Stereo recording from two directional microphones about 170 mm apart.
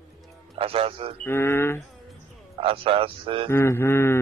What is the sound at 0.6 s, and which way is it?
Speech, 35° right (ahead or behind).